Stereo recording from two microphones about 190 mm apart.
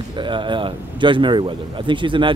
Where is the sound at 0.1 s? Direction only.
25° right (ahead or behind).